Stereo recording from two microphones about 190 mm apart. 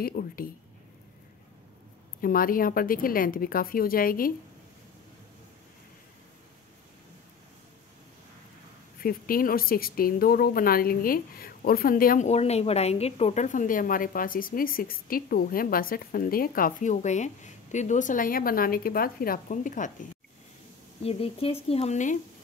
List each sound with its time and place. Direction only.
0.0 s a woman's voice: 50° left (ahead or behind)
2.2 s a woman's voice: 50° left (ahead or behind)
9.0 s a woman's voice: 50° left (ahead or behind)
21.0 s speech: 30° left (ahead or behind)